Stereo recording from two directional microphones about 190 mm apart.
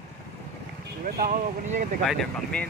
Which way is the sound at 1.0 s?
50° right (ahead or behind).